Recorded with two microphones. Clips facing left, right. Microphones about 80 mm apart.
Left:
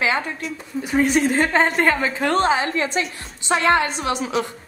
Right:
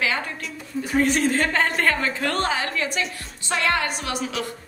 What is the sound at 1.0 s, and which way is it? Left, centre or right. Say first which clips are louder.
A woman's voice: left 4 dB; centre.